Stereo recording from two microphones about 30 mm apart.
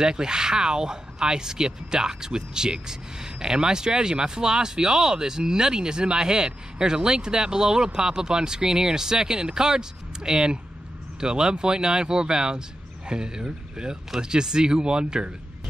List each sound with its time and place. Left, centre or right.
0.0 s speech: right